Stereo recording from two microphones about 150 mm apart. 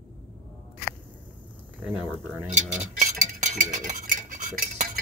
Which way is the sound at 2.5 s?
55° right (ahead or behind).